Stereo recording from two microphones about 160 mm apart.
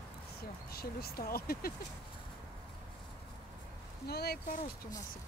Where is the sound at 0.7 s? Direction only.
75° left (ahead or behind).